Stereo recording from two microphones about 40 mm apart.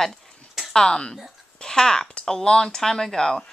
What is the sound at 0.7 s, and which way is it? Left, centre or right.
Speech, centre.